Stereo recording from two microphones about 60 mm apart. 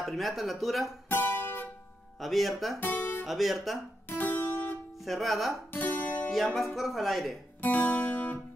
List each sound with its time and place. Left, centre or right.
0.0 s speech: centre
1.0 s guitar: left
2.1 s speech: centre
2.8 s speech: left
3.3 s speech: centre
4.1 s music: left
5.0 s speech: centre
5.7 s music: left
6.3 s speech: centre
7.6 s music: left